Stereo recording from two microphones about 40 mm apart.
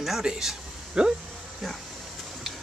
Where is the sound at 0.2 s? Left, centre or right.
Centre.